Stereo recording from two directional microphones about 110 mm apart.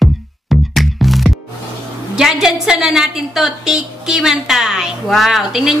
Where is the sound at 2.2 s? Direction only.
5° right (ahead or behind).